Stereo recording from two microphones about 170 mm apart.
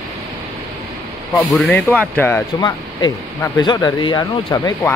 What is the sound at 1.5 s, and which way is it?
Speech, 5° left (ahead or behind).